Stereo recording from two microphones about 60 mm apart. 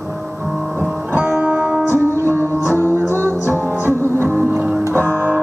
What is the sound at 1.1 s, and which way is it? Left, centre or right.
Music, right.